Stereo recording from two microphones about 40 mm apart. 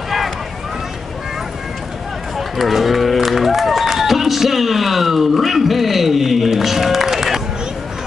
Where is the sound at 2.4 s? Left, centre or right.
Centre.